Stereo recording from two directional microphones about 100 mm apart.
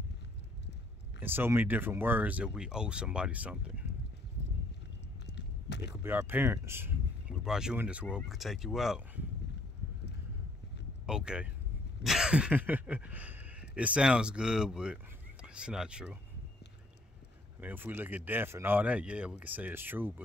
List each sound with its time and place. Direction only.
1.2 s speech: 20° right (ahead or behind)
5.8 s speech: 20° right (ahead or behind)
7.2 s a sound: 5° right (ahead or behind)
7.7 s speech: 15° right (ahead or behind)
8.3 s speech: centre (ahead or behind)
11.1 s speech: 10° right (ahead or behind)
17.6 s speech: 20° right (ahead or behind)